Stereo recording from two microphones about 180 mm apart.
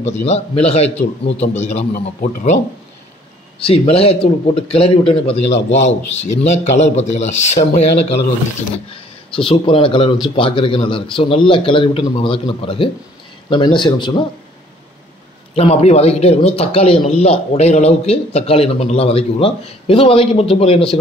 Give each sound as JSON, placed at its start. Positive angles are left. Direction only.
{"t": 0.0, "sound": "a man's voice", "side_deg": 35}
{"t": 1.2, "sound": "a man's voice", "side_deg": 80}
{"t": 1.6, "sound": "a man's voice", "side_deg": 40}
{"t": 3.5, "sound": "a man's voice", "side_deg": 30}
{"t": 9.3, "sound": "a man's voice", "side_deg": 30}
{"t": 15.5, "sound": "a man's voice", "side_deg": 35}